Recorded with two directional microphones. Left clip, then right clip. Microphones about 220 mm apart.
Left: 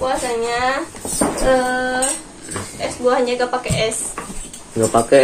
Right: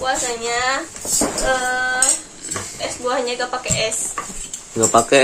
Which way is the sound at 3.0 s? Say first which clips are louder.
Left 5 dB; 10° left (ahead or behind).